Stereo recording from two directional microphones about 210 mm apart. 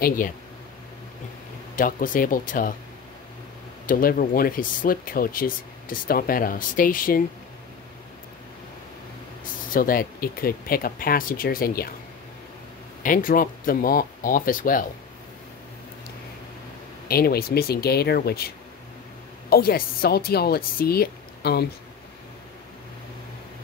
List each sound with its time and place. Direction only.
1.8 s speech: 40° left (ahead or behind)
3.8 s speech: 45° left (ahead or behind)
9.4 s speech: 40° left (ahead or behind)
13.0 s speech: 40° left (ahead or behind)
17.1 s speech: 45° left (ahead or behind)
19.5 s speech: 45° left (ahead or behind)